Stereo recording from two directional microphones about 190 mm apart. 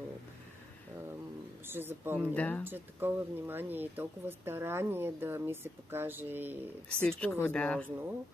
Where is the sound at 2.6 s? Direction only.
10° right (ahead or behind).